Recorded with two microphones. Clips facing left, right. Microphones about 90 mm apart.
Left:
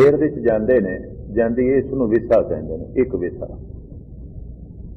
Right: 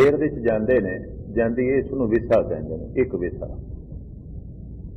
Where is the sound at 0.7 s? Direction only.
10° left (ahead or behind).